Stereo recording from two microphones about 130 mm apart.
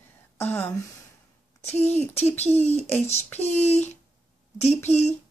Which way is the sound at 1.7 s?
15° left (ahead or behind).